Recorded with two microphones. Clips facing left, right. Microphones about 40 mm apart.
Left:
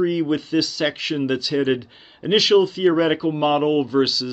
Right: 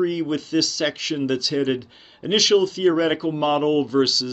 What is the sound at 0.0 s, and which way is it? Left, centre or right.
Speech, centre.